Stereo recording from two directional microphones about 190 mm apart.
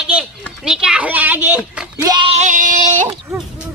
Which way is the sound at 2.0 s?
25° right (ahead or behind).